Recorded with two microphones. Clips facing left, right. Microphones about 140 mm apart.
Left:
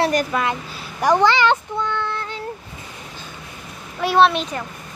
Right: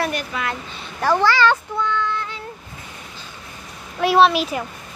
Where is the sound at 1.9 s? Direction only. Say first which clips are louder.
Right 2 dB; 35° left (ahead or behind).